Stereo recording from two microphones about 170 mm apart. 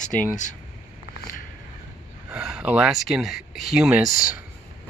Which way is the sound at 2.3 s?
5° right (ahead or behind).